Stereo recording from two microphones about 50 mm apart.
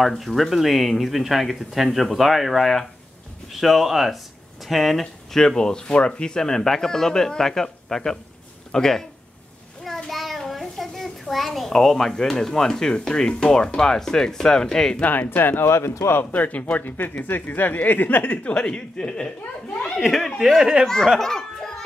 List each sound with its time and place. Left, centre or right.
0.2 s speech: centre
10.0 s a sound: centre
13.0 s speech: centre
15.0 s speech: left
15.6 s speech: left
16.3 s speech: left
18.5 s speech: centre
20.0 s speech: centre
20.8 s speech: centre
21.2 s belly laugh: centre